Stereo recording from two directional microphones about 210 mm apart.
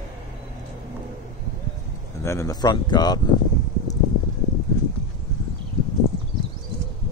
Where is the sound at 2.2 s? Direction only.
15° left (ahead or behind).